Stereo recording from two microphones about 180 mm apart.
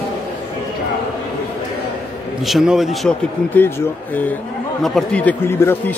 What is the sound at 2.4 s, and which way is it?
Speech, centre (ahead or behind).